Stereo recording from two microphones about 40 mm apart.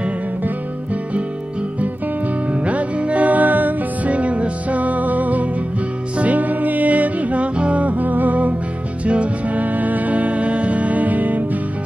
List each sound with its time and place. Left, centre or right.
2.5 s music: right
4.1 s music: right